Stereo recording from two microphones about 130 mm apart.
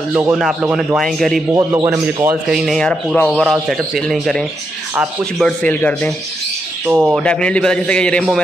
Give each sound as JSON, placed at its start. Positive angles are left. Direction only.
{"t": 0.3, "sound": "a man's voice", "side_deg": -5}
{"t": 0.9, "sound": "a man's voice", "side_deg": 0}
{"t": 1.5, "sound": "a man's voice", "side_deg": -25}
{"t": 2.5, "sound": "a man's voice", "side_deg": 0}
{"t": 3.2, "sound": "a man's voice", "side_deg": 15}
{"t": 3.6, "sound": "a man's voice", "side_deg": 0}
{"t": 6.9, "sound": "a man's voice", "side_deg": -10}
{"t": 7.2, "sound": "a man's voice", "side_deg": 10}